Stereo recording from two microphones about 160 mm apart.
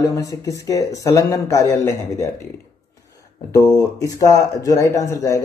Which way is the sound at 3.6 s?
20° left (ahead or behind).